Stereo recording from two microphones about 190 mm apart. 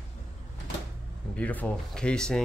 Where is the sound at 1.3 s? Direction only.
10° left (ahead or behind).